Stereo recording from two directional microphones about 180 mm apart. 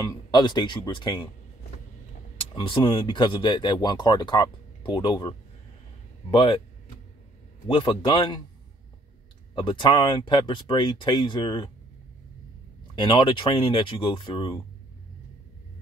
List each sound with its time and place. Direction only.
0.0 s speech: 20° left (ahead or behind)
2.5 s speech: 25° left (ahead or behind)
6.3 s speech: 25° left (ahead or behind)
7.6 s speech: 25° left (ahead or behind)
9.6 s speech: 30° left (ahead or behind)
12.9 s speech: 25° left (ahead or behind)